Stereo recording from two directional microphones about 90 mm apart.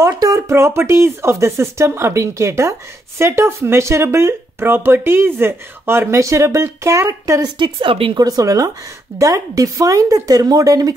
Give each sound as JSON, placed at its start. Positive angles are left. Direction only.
{"t": 0.1, "sound": "speech", "side_deg": -40}
{"t": 7.5, "sound": "speech", "side_deg": -65}
{"t": 8.2, "sound": "speech", "side_deg": -45}